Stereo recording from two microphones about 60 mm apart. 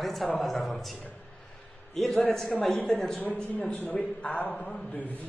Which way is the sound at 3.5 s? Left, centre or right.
Left.